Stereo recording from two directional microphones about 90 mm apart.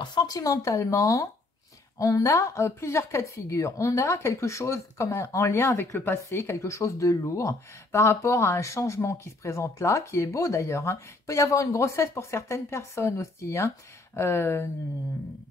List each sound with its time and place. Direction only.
0.0 s speech: 55° left (ahead or behind); by 14.7 s 30° left (ahead or behind)